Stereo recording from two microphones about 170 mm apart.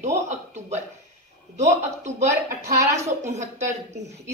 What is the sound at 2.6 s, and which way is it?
Speech, 20° right (ahead or behind).